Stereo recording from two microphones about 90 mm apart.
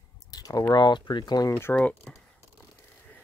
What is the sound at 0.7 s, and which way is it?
Speech, 55° left (ahead or behind).